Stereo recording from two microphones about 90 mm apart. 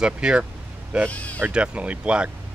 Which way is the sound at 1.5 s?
10° right (ahead or behind).